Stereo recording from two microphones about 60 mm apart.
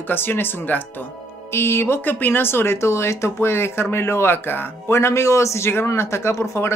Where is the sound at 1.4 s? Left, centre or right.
Left.